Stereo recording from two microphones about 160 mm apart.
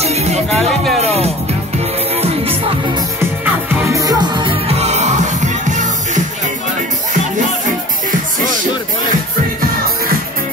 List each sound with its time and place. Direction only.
0.0 s music: 40° right (ahead or behind)
3.7 s music: 20° right (ahead or behind); by 6.2 s 50° right (ahead or behind)